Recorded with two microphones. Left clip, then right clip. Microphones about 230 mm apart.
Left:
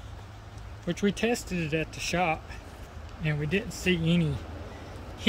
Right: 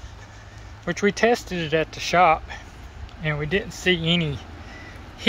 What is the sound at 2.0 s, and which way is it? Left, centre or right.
Speech, right.